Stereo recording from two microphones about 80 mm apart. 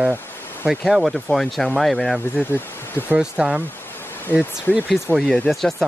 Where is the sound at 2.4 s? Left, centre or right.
Left.